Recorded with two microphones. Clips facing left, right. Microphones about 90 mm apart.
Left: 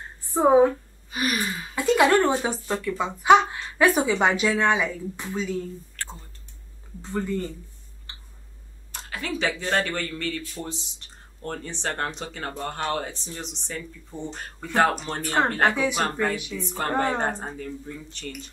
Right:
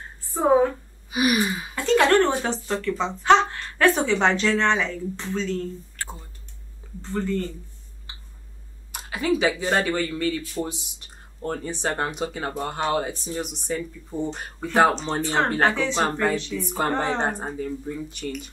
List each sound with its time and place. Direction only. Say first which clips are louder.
0.2 s a sound: left 2 dB; 20° left (ahead or behind)
1.1 s speech: right 5 dB; 10° right (ahead or behind)
1.8 s speech: right 1 dB; 10° left (ahead or behind)
6.0 s clicking: right 2 dB; 10° right (ahead or behind)
7.0 s speech: right 2 dB; 15° left (ahead or behind)
8.1 s tick: right 1 dB; 10° right (ahead or behind)
8.9 s speech: right 7 dB; 10° right (ahead or behind)
15.7 s speech: even; 10° left (ahead or behind)
16.0 s speech: right 3 dB; 10° right (ahead or behind)